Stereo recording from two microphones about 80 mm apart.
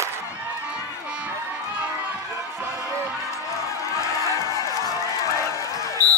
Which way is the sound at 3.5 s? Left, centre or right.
Left.